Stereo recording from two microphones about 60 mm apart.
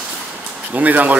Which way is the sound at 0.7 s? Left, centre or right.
Right.